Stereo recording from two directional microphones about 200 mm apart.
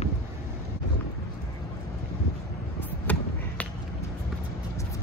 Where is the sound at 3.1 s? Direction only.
5° left (ahead or behind).